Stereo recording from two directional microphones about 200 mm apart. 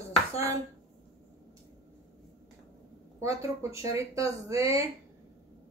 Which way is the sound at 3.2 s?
15° right (ahead or behind).